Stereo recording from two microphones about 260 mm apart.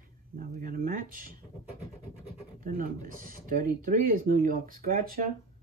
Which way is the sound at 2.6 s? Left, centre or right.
Right.